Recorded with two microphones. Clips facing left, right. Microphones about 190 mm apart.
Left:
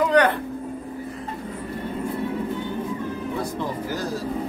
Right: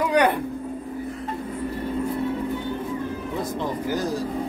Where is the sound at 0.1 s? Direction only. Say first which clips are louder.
Left 1 dB; 10° right (ahead or behind).